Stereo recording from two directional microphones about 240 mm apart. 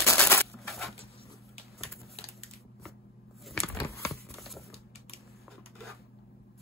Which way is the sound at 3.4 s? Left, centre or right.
Centre.